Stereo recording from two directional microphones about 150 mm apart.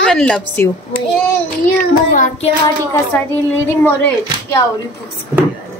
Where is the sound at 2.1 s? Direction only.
60° left (ahead or behind).